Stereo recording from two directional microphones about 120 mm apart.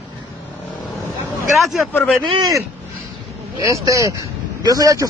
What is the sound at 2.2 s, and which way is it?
Speech, 40° right (ahead or behind).